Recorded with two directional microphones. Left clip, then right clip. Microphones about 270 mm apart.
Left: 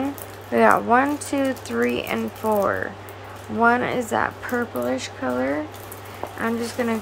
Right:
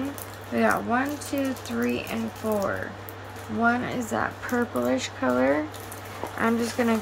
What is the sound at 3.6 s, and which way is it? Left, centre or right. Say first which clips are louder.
Speech: left 6 dB; centre.